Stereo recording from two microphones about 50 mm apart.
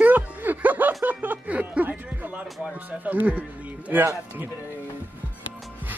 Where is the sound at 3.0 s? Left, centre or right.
Right.